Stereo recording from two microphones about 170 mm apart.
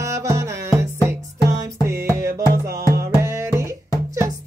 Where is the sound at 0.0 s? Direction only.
15° right (ahead or behind).